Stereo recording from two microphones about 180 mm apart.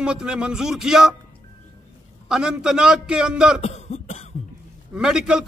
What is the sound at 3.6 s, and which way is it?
Cough, 40° left (ahead or behind).